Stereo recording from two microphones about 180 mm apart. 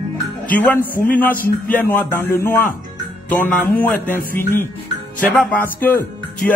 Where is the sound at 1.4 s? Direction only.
50° left (ahead or behind).